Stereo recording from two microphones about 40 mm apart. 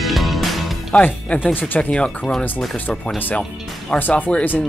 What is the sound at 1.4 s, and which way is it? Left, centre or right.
Speech, left.